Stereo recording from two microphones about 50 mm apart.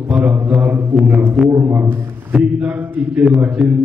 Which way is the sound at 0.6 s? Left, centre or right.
Right.